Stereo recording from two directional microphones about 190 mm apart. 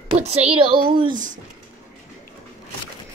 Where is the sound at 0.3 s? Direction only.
30° right (ahead or behind).